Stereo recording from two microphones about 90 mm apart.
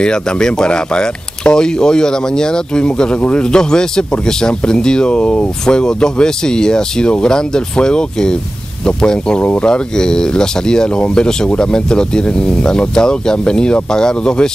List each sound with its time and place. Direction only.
0.0 s speech: 10° left (ahead or behind)